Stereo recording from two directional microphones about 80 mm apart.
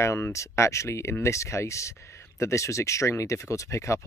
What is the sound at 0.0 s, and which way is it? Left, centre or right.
Speech, left.